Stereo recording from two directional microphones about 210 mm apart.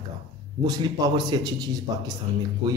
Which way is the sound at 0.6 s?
20° right (ahead or behind).